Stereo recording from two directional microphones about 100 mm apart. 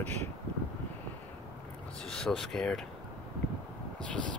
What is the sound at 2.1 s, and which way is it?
Speech, 5° left (ahead or behind).